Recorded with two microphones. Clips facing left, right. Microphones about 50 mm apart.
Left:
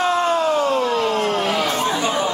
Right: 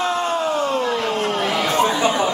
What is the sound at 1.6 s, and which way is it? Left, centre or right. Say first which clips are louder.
Chatter: right 3 dB; right.